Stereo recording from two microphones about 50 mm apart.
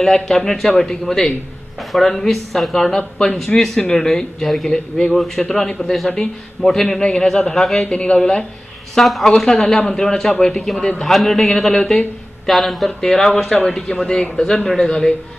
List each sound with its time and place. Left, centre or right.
0.0 s a man's voice: centre
7.0 s a man's voice: centre
7.9 s a man's voice: left
9.0 s a man's voice: centre